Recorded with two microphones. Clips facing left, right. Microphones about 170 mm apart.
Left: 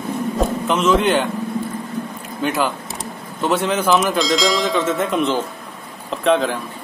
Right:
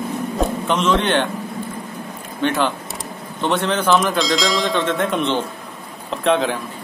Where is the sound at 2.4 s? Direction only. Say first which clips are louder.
Right 1 dB; 5° left (ahead or behind).